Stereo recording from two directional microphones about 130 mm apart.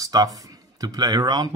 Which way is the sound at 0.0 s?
30° right (ahead or behind).